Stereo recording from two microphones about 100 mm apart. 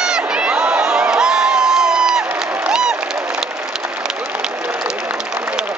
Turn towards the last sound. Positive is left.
turn(degrees=-10)  # may be behind; listen again after turning